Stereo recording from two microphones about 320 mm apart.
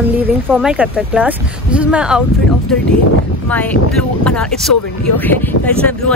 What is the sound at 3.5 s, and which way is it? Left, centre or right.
Speech, centre.